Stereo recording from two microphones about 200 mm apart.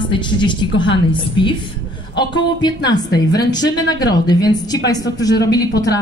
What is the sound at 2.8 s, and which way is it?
A woman's voice, 20° left (ahead or behind).